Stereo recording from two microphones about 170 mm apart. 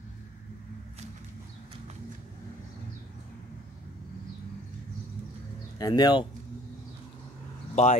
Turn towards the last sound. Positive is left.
turn(degrees=40)  # may be behind; listen again after turning